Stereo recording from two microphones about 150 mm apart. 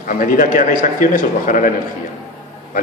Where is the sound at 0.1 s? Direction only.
65° left (ahead or behind).